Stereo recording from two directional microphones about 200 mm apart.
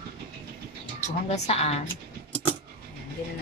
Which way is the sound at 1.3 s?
30° left (ahead or behind).